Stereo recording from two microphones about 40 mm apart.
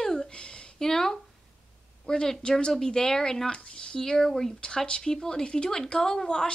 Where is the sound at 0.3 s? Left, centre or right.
Left.